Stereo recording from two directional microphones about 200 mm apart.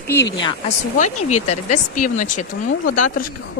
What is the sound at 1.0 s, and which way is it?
Speech, 35° left (ahead or behind).